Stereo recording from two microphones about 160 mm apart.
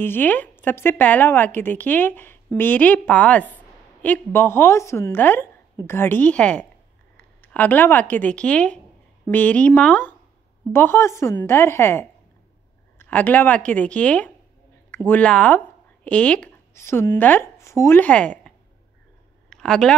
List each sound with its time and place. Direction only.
0.0 s a woman's voice: 10° left (ahead or behind)
19.5 s speech: 5° left (ahead or behind)